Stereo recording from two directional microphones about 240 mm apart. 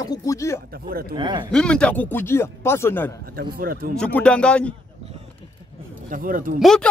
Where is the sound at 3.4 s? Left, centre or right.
Right.